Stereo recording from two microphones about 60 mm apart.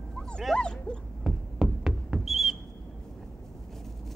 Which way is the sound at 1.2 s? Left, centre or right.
Centre.